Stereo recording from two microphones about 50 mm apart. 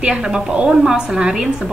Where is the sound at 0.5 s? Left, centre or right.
Right.